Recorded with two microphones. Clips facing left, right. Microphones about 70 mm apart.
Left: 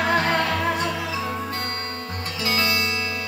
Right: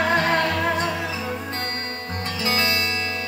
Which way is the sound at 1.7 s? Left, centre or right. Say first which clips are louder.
Even; right.